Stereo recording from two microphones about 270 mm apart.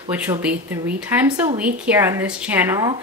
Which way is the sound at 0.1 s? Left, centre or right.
Centre.